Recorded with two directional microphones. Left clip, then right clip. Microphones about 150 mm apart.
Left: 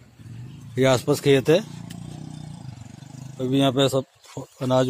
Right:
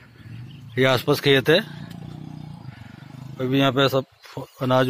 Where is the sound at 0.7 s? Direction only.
20° left (ahead or behind).